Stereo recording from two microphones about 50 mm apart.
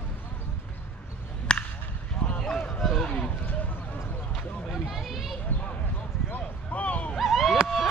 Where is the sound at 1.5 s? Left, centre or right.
Centre.